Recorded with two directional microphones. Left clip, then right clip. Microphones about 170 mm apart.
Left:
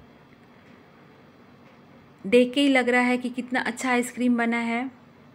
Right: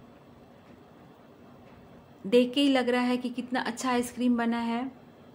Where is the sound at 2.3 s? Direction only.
15° left (ahead or behind).